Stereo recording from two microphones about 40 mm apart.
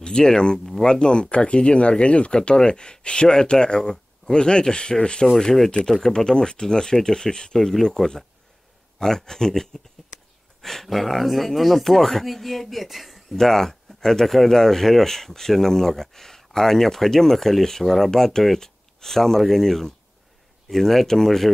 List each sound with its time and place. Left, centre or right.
0.0 s speech: centre
5.4 s speech: centre
5.7 s speech: centre
13.4 s speech: centre